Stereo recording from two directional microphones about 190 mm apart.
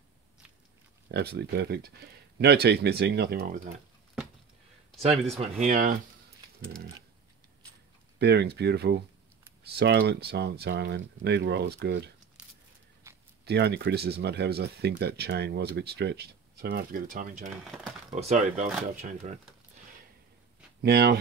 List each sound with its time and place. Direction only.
1.0 s speech: 60° right (ahead or behind)
5.0 s speech: 35° right (ahead or behind)
8.2 s speech: 60° right (ahead or behind)
13.0 s a sound: 15° right (ahead or behind)
13.5 s speech: 60° right (ahead or behind); by 19.4 s 40° right (ahead or behind)
20.8 s speech: 55° right (ahead or behind)